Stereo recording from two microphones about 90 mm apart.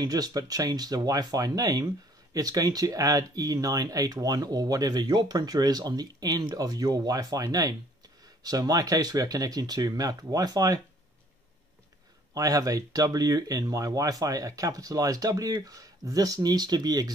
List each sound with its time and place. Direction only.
0.0 s speech: 45° right (ahead or behind)
12.4 s speech: 40° right (ahead or behind)